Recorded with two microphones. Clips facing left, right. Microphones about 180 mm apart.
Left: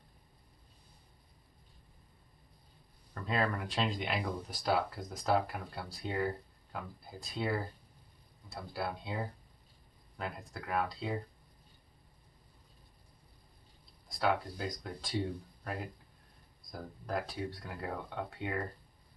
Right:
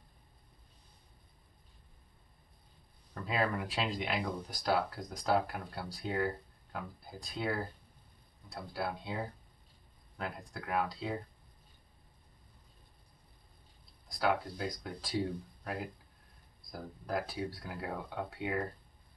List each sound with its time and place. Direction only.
3.2 s speech: 5° right (ahead or behind)
14.0 s speech: centre (ahead or behind)